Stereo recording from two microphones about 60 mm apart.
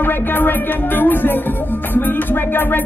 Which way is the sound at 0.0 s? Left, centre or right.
Left.